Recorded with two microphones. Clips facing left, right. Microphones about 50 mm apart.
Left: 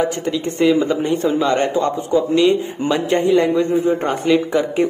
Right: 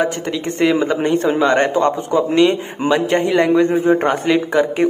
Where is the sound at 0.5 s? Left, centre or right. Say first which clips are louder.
Even; right.